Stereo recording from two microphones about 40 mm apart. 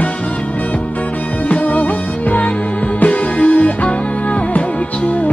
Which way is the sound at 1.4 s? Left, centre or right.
Left.